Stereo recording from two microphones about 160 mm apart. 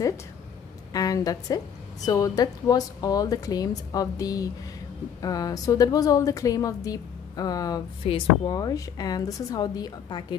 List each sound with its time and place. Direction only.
0.9 s a woman's voice: 20° left (ahead or behind)
8.0 s speech: 35° left (ahead or behind)
8.5 s a woman's voice: 25° left (ahead or behind)